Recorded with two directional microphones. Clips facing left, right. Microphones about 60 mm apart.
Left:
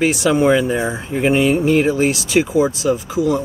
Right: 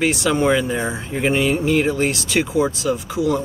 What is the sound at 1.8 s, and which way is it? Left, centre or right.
Speech, centre.